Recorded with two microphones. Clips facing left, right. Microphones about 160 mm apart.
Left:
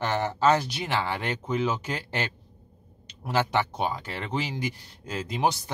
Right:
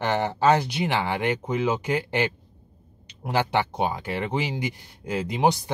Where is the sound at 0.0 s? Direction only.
15° right (ahead or behind).